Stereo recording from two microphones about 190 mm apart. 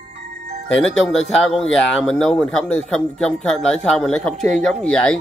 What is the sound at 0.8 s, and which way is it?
Speech, centre (ahead or behind).